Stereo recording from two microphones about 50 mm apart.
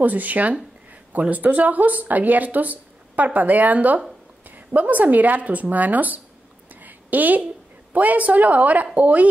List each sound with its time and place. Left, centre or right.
0.0 s speech: right
6.7 s a sound: right
7.9 s speech: right